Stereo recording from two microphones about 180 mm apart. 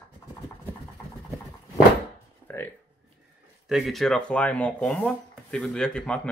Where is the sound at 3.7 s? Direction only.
Centre (ahead or behind).